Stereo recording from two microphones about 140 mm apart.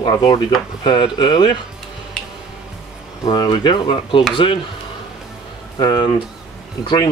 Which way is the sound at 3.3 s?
30° left (ahead or behind).